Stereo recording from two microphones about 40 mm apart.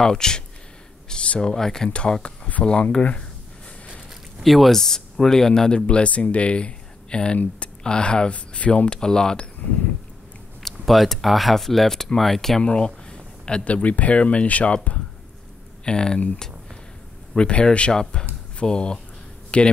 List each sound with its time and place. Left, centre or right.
0.0 s speech: centre
1.0 s a sound: left
1.4 s speech: centre
1.9 s speech: left
2.2 s speech: left
2.6 s speech: left
4.4 s speech: centre
4.7 s speech: centre
10.6 s speech: centre
12.6 s a sound: left
13.7 s speech: left
15.8 s speech: centre
17.4 s speech: left